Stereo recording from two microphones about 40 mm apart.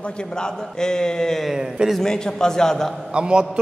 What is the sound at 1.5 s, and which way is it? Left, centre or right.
Speech, centre.